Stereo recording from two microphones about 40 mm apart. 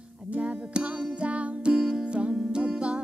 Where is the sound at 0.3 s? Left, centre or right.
Right.